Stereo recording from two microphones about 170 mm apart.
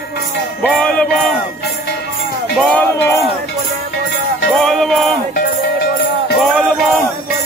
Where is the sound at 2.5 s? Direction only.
5° left (ahead or behind).